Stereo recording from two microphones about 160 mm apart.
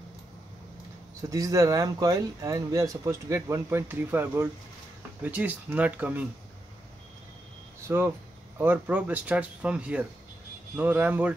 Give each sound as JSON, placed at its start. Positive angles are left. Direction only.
{"t": 1.3, "sound": "speech", "side_deg": -20}
{"t": 7.8, "sound": "speech", "side_deg": -15}